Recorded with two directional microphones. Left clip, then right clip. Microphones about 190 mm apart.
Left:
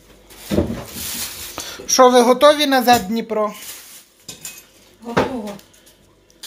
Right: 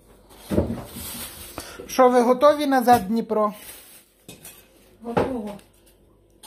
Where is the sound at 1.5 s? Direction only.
20° right (ahead or behind).